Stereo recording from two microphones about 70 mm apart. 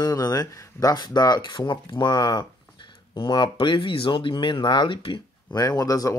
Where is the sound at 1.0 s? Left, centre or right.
Left.